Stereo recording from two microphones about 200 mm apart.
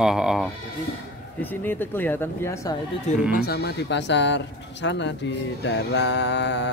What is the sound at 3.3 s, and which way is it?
Speech, 50° left (ahead or behind).